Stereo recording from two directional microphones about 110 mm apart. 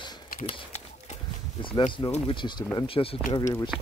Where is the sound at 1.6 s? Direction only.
45° left (ahead or behind).